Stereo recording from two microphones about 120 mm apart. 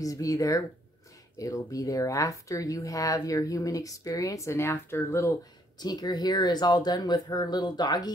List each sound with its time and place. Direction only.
0.0 s speech: 30° left (ahead or behind)